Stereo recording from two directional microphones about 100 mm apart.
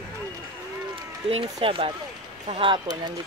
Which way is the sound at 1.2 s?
65° right (ahead or behind).